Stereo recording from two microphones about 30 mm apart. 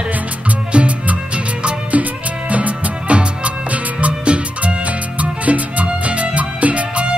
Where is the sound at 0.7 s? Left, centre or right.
Right.